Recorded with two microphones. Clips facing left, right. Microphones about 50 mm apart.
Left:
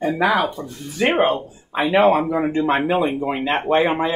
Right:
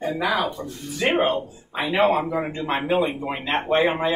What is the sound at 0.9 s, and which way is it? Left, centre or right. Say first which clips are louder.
Speech: left 3 dB; left.